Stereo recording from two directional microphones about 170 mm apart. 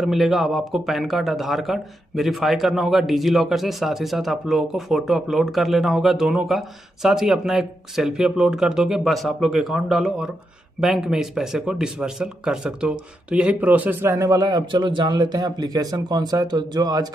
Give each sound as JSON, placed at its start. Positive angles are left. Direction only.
{"t": 0.0, "sound": "a man's voice", "side_deg": 0}